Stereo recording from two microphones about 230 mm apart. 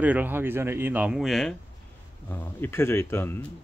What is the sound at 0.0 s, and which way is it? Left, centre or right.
Speech, centre.